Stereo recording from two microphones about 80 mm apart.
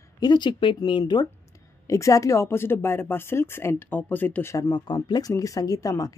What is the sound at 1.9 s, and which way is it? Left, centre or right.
Speech, left.